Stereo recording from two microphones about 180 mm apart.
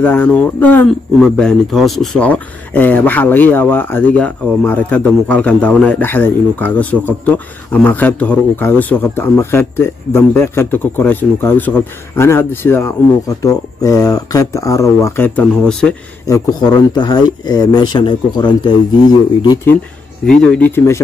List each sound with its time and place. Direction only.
0.0 s speech: 10° left (ahead or behind)
16.3 s speech: 20° left (ahead or behind)
20.2 s speech: 5° left (ahead or behind)